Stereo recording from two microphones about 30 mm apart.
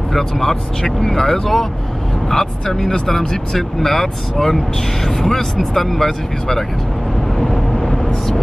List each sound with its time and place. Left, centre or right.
0.1 s speech: centre
3.5 s speech: centre
7.3 s vehicle: centre